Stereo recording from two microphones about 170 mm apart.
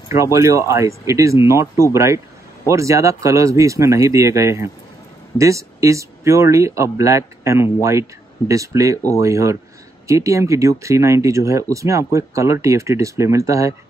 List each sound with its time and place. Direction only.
0.1 s speech: 15° right (ahead or behind)